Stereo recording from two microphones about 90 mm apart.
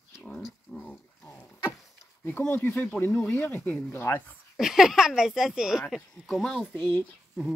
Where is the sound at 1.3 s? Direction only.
25° left (ahead or behind).